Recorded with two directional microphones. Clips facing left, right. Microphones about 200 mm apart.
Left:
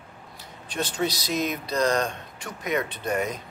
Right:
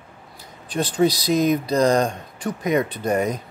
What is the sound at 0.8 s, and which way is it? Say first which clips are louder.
Speech: right 8 dB; 35° right (ahead or behind).